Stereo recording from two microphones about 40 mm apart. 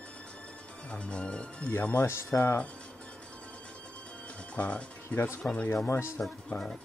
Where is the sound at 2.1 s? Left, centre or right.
Left.